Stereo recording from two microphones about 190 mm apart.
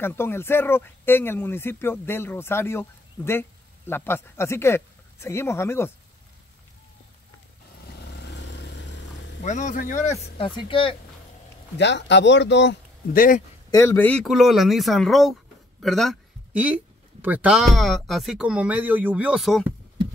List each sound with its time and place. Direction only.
0.0 s speech: 10° left (ahead or behind)
7.8 s vehicle: 60° left (ahead or behind)
9.4 s speech: 40° left (ahead or behind)
10.3 s speech: 30° left (ahead or behind)
11.8 s speech: 65° left (ahead or behind)
13.1 s speech: 45° left (ahead or behind)
13.7 s speech: 15° left (ahead or behind)
14.2 s speech: centre (ahead or behind)